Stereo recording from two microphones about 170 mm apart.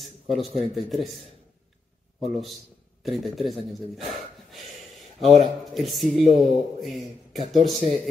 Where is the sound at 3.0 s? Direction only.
Centre (ahead or behind).